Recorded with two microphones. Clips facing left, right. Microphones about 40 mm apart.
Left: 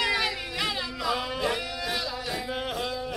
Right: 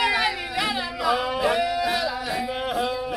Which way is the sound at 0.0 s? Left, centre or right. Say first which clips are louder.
Right 4 dB; centre.